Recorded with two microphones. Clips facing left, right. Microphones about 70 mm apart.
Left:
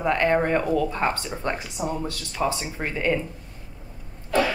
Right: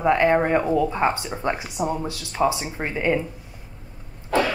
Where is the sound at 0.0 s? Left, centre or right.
Centre.